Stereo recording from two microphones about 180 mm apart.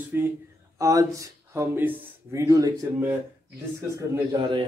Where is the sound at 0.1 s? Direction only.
10° right (ahead or behind).